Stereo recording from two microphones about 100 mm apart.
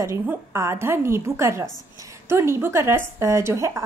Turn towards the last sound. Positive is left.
turn(degrees=-30)  # may be behind; listen again after turning